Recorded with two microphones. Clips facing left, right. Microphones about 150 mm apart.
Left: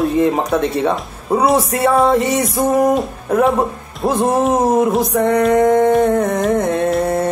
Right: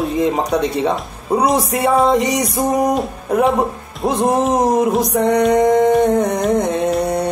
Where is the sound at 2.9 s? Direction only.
Centre (ahead or behind).